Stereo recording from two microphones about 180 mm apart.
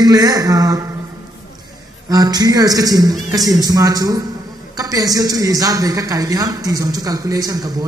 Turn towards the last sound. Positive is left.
turn(degrees=-20)  # may be behind; listen again after turning